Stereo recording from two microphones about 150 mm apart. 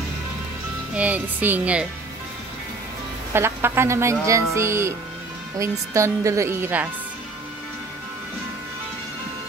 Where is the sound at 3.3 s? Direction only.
15° right (ahead or behind).